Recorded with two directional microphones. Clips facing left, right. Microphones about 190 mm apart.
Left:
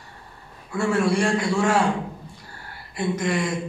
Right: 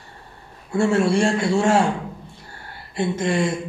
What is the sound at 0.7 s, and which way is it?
A man's voice, 25° right (ahead or behind).